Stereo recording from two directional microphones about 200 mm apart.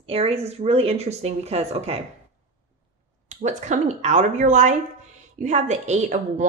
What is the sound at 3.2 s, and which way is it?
Speech, 35° right (ahead or behind).